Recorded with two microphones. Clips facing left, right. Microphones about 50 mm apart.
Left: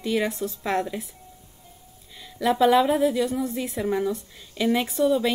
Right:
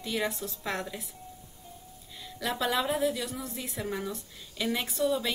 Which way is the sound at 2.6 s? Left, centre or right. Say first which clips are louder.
Left 9 dB; left.